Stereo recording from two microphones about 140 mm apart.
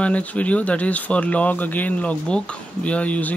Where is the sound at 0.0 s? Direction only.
10° left (ahead or behind).